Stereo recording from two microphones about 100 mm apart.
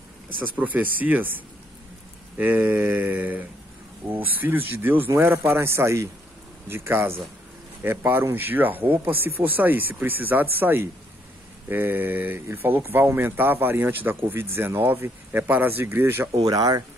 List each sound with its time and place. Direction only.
0.4 s a sound: 15° right (ahead or behind)
4.1 s speech: 20° right (ahead or behind)
16.4 s speech: 40° right (ahead or behind)